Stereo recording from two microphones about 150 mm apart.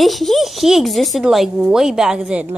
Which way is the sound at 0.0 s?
Centre (ahead or behind).